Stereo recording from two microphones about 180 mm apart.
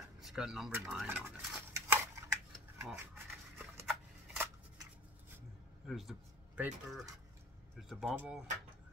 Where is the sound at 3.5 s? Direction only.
15° right (ahead or behind).